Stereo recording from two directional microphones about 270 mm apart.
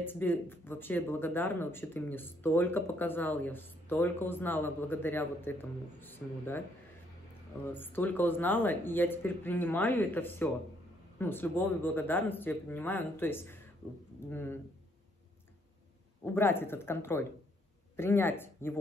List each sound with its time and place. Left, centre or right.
0.0 s speech: centre
7.7 s speech: centre
16.3 s speech: centre